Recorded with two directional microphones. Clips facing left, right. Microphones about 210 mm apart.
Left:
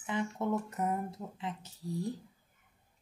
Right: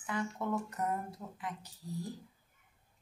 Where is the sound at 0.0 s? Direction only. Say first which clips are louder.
Left 3 dB; 20° left (ahead or behind).